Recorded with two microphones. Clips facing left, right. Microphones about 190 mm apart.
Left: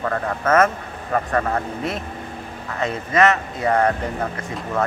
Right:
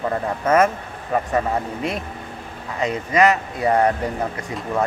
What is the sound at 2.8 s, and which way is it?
Speech, 15° right (ahead or behind).